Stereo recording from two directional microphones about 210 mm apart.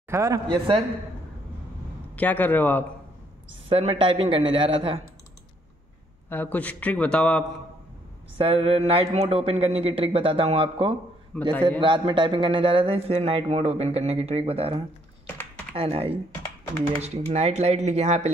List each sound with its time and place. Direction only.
0.1 s a man's voice: 15° right (ahead or behind)
2.1 s a man's voice: 10° left (ahead or behind)
3.6 s a man's voice: 25° right (ahead or behind)
6.2 s a man's voice: 10° left (ahead or behind)
8.4 s a man's voice: 25° right (ahead or behind)
11.3 s a man's voice: 5° left (ahead or behind)
11.8 s a man's voice: 25° right (ahead or behind)